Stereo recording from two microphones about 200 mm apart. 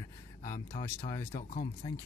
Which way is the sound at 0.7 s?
20° left (ahead or behind).